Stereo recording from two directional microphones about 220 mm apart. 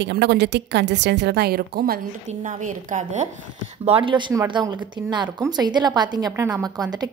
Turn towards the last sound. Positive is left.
turn(degrees=-15)  # may be behind; listen again after turning